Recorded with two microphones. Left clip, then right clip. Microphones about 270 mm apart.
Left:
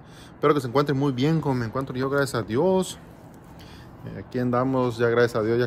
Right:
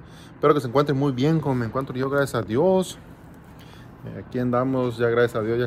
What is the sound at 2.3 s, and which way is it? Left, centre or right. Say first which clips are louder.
Speech: right 2 dB; centre.